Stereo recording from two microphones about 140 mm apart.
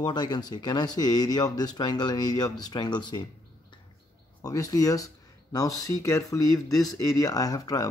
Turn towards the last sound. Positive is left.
turn(degrees=25)  # may be behind; listen again after turning